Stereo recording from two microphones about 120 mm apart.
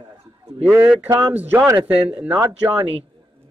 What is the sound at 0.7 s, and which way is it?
Speech, 15° right (ahead or behind).